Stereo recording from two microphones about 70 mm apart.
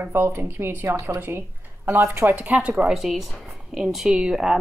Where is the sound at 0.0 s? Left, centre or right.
Right.